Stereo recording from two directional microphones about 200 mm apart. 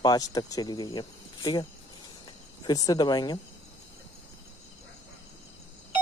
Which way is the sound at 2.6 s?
20° left (ahead or behind).